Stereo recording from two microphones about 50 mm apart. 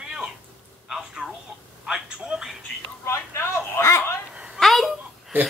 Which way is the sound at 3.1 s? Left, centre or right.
Left.